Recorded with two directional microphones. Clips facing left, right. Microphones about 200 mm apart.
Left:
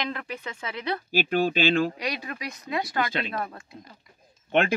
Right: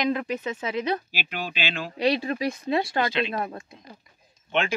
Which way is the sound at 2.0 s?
30° right (ahead or behind).